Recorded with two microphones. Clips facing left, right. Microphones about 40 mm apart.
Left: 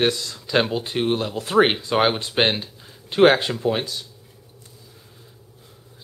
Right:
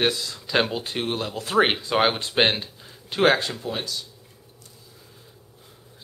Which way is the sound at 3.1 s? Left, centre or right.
Centre.